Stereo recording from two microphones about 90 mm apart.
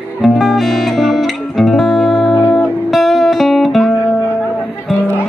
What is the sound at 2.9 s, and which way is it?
Music, centre (ahead or behind).